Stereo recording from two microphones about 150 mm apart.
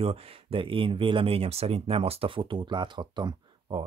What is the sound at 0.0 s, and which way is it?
Speech, 40° right (ahead or behind).